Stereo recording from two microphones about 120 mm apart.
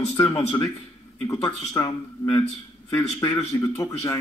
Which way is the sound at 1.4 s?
35° left (ahead or behind).